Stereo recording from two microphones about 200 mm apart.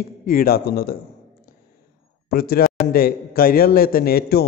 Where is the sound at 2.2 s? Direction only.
50° left (ahead or behind).